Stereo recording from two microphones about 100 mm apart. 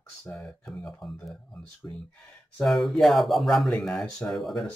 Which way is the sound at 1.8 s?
30° left (ahead or behind).